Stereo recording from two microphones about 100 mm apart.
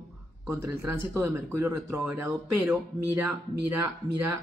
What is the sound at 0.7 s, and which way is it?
Speech, 25° right (ahead or behind).